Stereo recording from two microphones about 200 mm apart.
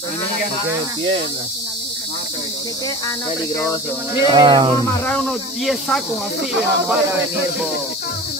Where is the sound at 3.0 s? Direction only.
20° left (ahead or behind).